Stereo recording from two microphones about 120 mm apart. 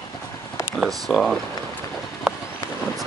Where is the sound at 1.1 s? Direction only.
Centre (ahead or behind).